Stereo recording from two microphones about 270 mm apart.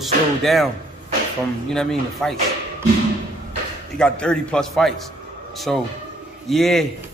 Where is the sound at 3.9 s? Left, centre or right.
Centre.